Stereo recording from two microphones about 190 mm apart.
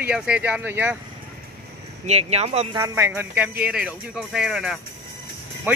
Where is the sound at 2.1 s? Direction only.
35° right (ahead or behind).